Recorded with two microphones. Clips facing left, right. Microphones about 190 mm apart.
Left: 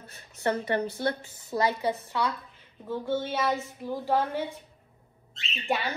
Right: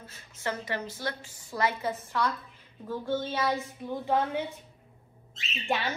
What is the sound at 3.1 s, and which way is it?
A woman's voice, centre (ahead or behind).